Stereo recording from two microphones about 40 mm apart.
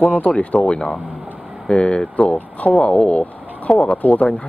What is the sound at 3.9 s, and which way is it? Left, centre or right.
Speech, left.